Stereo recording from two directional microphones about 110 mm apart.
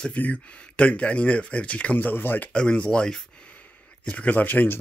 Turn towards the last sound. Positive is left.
turn(degrees=15)  # may be behind; listen again after turning